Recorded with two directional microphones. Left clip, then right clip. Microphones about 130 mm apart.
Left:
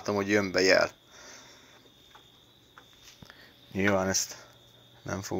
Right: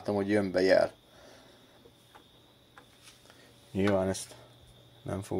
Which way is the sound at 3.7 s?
30° right (ahead or behind).